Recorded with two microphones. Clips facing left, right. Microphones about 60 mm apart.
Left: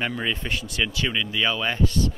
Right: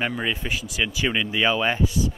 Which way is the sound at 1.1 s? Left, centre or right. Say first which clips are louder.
Right 3 dB; right.